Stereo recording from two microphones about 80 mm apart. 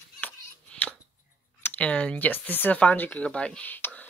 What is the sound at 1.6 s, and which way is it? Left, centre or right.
Speech, centre.